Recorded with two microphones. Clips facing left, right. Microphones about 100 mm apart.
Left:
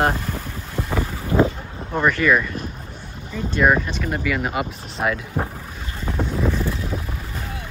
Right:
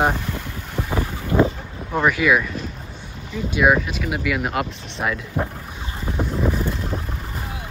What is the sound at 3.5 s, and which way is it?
Speech, 5° right (ahead or behind).